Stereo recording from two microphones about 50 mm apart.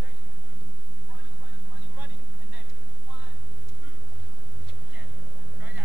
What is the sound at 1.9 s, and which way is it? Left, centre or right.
Vehicle, right.